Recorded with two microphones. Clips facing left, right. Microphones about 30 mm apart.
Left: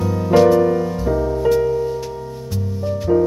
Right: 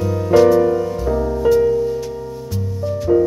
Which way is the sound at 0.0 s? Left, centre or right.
Centre.